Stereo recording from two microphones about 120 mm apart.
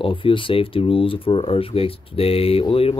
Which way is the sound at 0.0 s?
45° left (ahead or behind).